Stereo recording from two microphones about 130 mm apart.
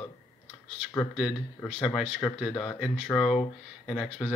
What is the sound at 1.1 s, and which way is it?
Speech, 5° right (ahead or behind).